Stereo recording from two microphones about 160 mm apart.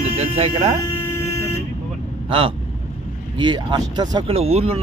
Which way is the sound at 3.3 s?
30° right (ahead or behind).